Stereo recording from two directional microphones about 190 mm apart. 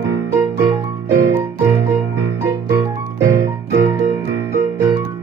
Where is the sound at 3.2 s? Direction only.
15° right (ahead or behind).